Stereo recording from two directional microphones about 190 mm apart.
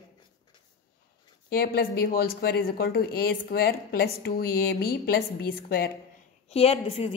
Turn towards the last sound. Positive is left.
turn(degrees=30)  # may be behind; listen again after turning